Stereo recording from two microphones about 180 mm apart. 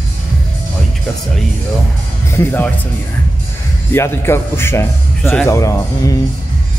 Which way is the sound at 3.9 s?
15° left (ahead or behind).